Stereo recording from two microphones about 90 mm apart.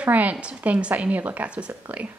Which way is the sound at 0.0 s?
15° right (ahead or behind).